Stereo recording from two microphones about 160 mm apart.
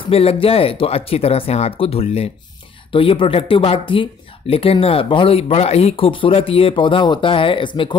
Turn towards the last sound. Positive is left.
turn(degrees=30)  # may be behind; listen again after turning